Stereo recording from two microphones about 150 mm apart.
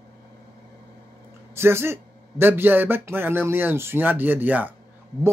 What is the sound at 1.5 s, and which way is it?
Speech, 15° right (ahead or behind).